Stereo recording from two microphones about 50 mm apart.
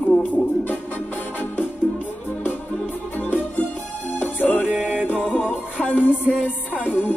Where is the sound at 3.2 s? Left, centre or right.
Left.